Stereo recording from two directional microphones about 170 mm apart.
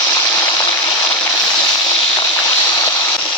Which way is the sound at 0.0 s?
15° left (ahead or behind).